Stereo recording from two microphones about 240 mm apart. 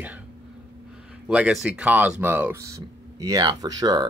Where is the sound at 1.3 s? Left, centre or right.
Centre.